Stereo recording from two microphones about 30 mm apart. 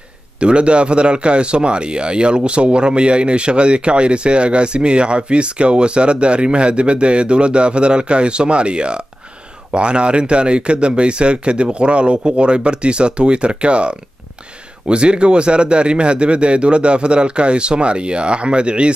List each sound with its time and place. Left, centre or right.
0.4 s speech: right